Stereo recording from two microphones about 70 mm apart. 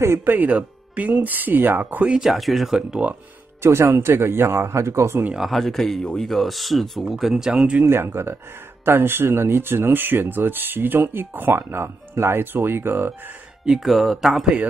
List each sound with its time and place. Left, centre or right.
0.2 s speech: right
2.0 s speech: centre
3.6 s speech: right
5.3 s speech: centre
7.8 s speech: right
13.7 s speech: centre